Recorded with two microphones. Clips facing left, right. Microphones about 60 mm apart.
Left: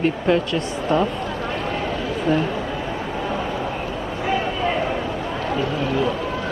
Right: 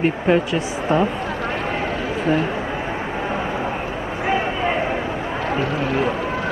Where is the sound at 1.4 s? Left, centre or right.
Right.